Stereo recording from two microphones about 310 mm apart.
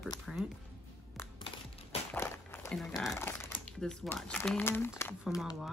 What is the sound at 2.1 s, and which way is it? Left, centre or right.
Walk, centre.